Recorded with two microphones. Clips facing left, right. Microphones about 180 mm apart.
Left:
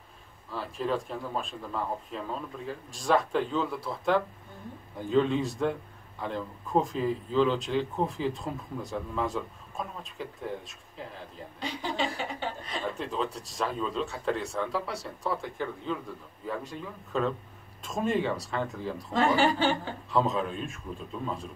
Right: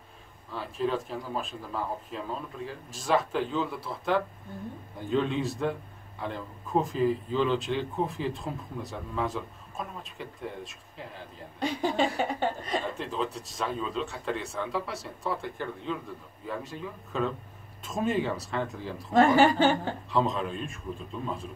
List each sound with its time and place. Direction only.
0.5 s a man's voice: centre (ahead or behind)
11.6 s speech: 50° right (ahead or behind)
12.9 s a man's voice: centre (ahead or behind)
19.1 s speech: 50° right (ahead or behind)
20.1 s a man's voice: centre (ahead or behind)